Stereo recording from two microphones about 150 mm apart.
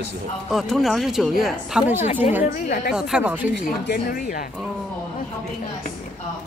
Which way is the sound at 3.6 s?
80° left.